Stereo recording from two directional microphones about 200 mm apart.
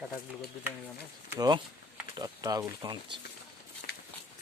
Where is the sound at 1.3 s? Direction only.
20° right (ahead or behind).